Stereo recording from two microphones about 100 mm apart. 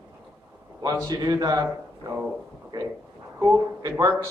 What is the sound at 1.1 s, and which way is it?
Speech, 35° right (ahead or behind).